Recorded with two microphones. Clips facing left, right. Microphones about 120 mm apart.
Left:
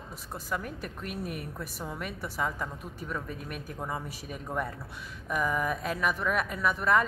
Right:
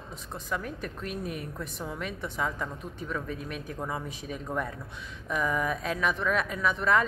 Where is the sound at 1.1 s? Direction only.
60° left (ahead or behind).